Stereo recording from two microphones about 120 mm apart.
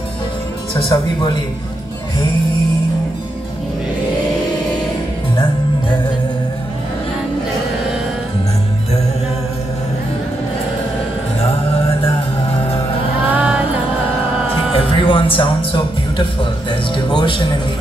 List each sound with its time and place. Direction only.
0.7 s speech: 40° left (ahead or behind)
13.3 s music: 10° right (ahead or behind)
14.7 s music: 50° left (ahead or behind)
16.9 s speech: 40° left (ahead or behind)